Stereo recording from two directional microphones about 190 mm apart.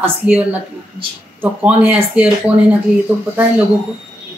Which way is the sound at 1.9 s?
5° right (ahead or behind).